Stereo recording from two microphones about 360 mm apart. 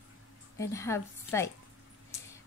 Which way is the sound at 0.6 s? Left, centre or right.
Centre.